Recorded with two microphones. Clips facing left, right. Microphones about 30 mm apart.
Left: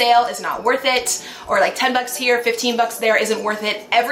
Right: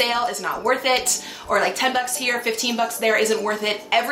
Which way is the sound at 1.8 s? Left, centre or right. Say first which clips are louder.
Left 3 dB; left.